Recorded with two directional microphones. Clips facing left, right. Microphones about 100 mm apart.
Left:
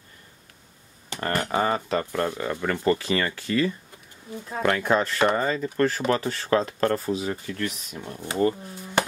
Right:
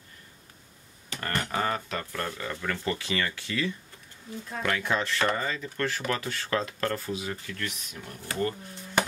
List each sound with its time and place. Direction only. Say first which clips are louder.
1.1 s speech: left 5 dB; 30° left (ahead or behind)
2.4 s speech: left 8 dB; 40° left (ahead or behind); by 8.5 s 25° left (ahead or behind)